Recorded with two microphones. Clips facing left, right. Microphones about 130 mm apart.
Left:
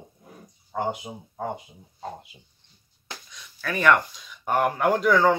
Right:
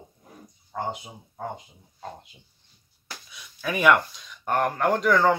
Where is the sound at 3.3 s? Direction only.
10° right (ahead or behind).